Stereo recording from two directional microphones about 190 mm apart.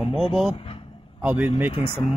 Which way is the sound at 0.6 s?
30° left (ahead or behind).